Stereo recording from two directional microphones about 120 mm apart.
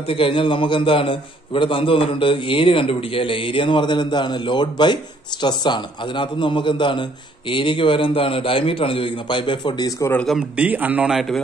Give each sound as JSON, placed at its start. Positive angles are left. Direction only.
{"t": 0.1, "sound": "a man's voice", "side_deg": 45}
{"t": 10.6, "sound": "a man's voice", "side_deg": -15}